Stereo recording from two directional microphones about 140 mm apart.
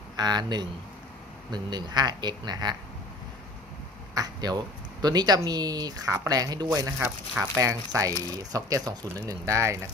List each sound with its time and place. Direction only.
0.1 s speech: 30° right (ahead or behind)
4.1 s speech: 25° right (ahead or behind)